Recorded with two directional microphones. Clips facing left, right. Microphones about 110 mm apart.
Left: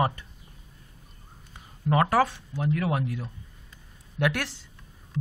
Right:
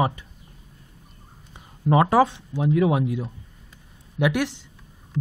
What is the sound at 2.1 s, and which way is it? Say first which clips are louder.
Speech: right 5 dB; 20° right (ahead or behind).